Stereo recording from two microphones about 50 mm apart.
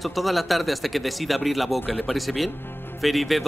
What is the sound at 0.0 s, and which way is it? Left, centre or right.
Speech, centre.